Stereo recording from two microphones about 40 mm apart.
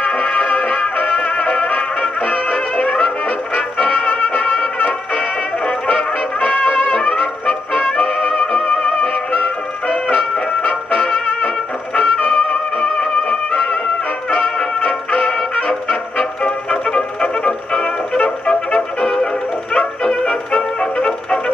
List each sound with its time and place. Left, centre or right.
0.0 s music: left